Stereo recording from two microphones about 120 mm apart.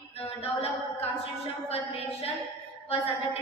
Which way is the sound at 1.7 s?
60° left (ahead or behind).